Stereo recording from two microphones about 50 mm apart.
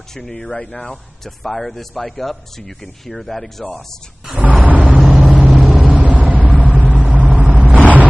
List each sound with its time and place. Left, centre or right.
0.1 s speech: centre
1.2 s speech: centre
4.4 s a sound: right
5.3 s vehicle: right